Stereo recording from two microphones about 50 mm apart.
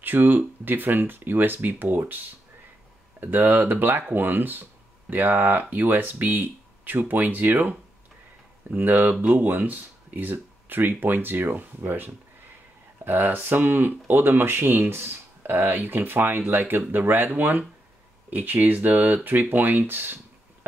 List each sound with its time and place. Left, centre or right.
0.0 s speech: right
8.7 s speech: right